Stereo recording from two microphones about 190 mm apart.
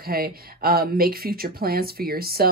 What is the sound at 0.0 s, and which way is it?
Speech, 50° right (ahead or behind).